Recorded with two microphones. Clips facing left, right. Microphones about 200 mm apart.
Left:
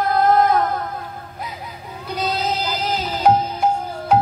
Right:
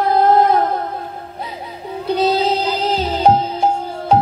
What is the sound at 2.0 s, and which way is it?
Music, 30° right (ahead or behind).